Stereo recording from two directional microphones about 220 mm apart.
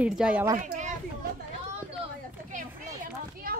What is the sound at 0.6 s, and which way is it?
Speech, 35° right (ahead or behind).